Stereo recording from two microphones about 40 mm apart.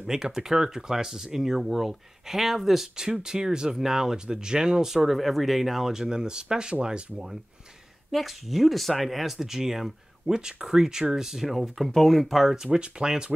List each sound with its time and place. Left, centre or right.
0.0 s speech: centre
5.1 s speech: centre
8.1 s speech: centre
12.6 s speech: right